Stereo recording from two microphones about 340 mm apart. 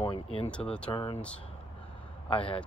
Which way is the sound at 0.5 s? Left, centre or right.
Centre.